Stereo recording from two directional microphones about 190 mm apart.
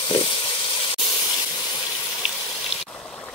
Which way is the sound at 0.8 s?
25° left (ahead or behind).